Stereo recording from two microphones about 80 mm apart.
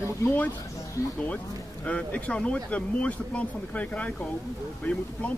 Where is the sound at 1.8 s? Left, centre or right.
Centre.